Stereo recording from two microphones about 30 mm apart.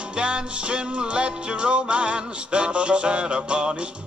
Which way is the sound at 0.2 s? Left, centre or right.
Right.